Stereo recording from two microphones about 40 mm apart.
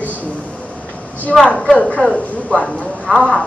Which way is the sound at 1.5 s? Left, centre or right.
Centre.